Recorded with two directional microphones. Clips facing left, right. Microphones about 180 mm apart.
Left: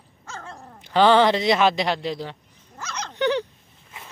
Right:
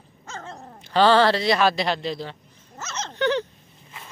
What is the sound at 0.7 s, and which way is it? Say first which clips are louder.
A man's voice: left 1 dB; 15° left (ahead or behind).